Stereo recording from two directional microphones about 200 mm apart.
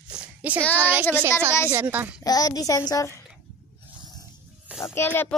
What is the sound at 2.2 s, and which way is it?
Speech, 20° left (ahead or behind).